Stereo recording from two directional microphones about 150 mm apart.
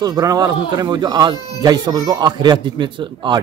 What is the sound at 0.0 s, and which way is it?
Speech, 25° right (ahead or behind).